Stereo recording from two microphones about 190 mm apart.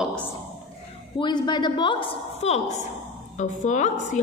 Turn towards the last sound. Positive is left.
turn(degrees=40)  # may be behind; listen again after turning